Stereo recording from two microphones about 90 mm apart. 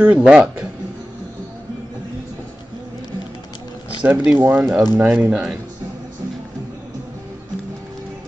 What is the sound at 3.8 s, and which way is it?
Speech, 15° right (ahead or behind).